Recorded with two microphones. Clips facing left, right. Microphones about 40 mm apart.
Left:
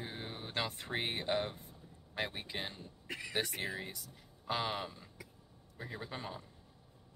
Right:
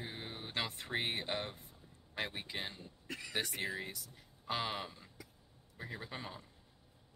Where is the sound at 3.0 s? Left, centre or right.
Left.